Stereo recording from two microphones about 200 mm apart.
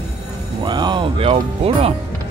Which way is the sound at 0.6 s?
20° right (ahead or behind).